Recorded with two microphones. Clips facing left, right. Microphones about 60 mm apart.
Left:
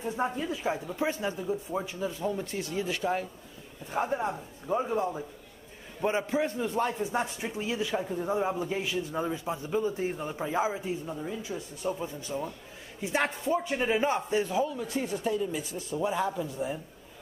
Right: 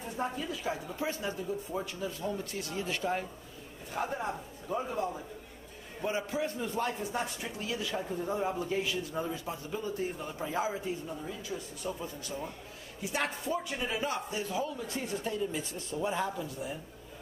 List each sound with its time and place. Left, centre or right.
0.0 s a man's voice: left
3.9 s a man's voice: left
14.8 s speech: centre